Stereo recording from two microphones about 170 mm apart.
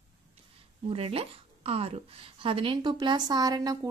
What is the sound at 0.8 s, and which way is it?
A woman's voice, 35° right (ahead or behind).